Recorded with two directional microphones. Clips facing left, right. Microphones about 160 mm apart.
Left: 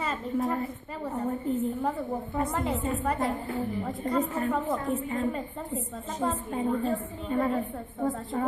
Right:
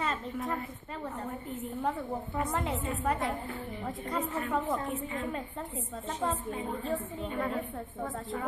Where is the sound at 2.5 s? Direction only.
Centre (ahead or behind).